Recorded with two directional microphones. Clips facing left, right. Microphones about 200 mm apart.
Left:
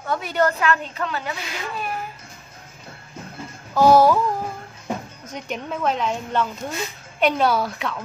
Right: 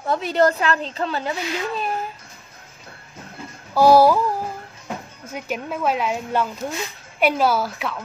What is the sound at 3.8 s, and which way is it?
Speech, 10° right (ahead or behind).